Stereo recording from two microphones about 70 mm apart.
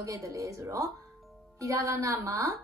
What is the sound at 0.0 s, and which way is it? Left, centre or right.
A woman's voice, right.